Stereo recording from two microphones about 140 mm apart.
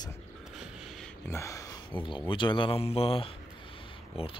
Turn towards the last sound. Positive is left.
turn(degrees=40)  # may be behind; listen again after turning